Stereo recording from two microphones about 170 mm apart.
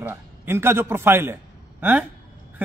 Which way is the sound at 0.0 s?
15° right (ahead or behind).